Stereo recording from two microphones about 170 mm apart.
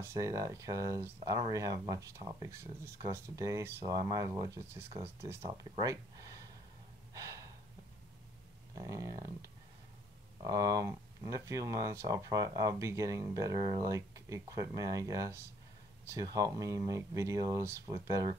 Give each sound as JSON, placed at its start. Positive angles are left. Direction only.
{"t": 0.0, "sound": "speech", "side_deg": -20}
{"t": 7.2, "sound": "gasp", "side_deg": -20}
{"t": 8.7, "sound": "speech", "side_deg": -20}